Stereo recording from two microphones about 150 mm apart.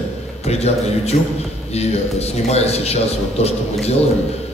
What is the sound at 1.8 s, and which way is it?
A man's voice, 45° left (ahead or behind).